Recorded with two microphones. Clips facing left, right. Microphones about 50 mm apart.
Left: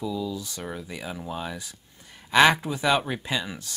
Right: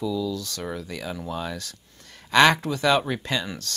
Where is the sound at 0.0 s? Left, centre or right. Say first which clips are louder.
Right 3 dB; left.